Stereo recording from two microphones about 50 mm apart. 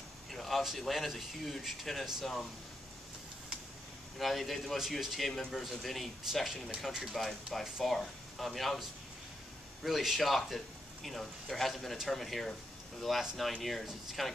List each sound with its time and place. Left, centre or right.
0.3 s speech: centre
4.2 s speech: centre
7.8 s speech: centre
9.8 s speech: centre